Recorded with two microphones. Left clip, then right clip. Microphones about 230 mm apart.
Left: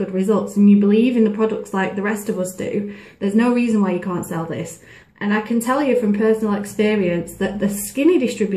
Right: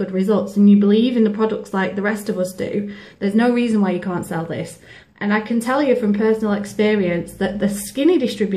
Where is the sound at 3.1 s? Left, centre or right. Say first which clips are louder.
Right 1 dB; centre.